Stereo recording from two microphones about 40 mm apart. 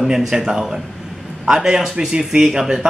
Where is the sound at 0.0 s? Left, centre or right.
Centre.